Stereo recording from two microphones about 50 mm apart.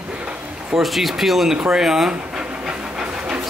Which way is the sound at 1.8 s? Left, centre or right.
Centre.